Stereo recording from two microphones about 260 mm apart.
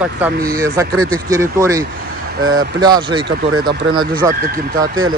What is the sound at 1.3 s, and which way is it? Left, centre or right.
Speech, centre.